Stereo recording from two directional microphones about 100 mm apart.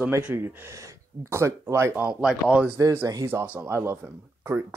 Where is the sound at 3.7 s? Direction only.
25° right (ahead or behind).